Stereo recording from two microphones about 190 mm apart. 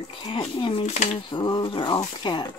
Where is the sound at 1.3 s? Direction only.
25° left (ahead or behind).